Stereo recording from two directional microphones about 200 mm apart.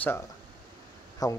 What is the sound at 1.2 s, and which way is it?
Speech, 20° left (ahead or behind).